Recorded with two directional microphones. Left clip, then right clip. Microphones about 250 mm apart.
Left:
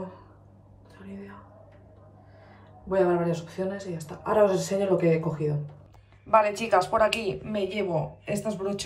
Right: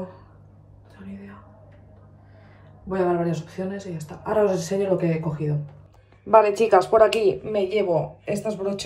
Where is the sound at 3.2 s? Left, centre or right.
Centre.